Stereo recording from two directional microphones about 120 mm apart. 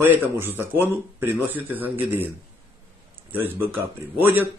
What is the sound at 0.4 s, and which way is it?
Speech, 20° right (ahead or behind).